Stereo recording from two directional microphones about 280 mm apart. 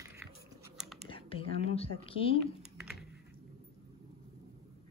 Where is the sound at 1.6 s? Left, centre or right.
Left.